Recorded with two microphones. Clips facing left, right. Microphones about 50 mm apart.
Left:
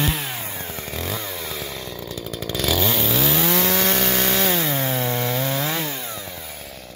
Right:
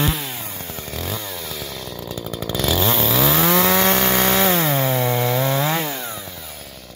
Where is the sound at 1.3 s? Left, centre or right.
Left.